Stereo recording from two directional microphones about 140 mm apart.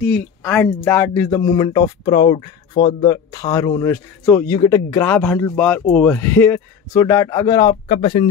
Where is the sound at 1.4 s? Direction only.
30° left (ahead or behind).